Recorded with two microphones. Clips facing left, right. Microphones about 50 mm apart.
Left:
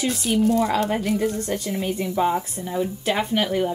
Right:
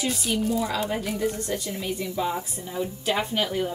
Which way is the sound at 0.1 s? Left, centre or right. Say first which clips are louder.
Left 5 dB; centre.